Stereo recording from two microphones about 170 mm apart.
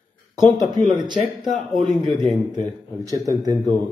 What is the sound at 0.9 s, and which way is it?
Speech, 25° right (ahead or behind).